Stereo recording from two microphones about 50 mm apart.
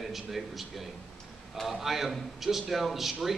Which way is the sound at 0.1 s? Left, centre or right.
Centre.